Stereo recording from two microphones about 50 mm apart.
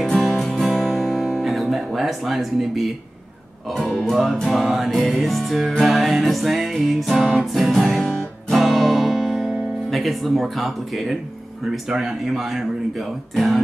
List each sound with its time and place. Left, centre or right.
0.0 s music: centre
0.4 s guitar: centre
4.1 s music: centre
8.0 s music: centre
8.5 s guitar: centre
11.7 s music: centre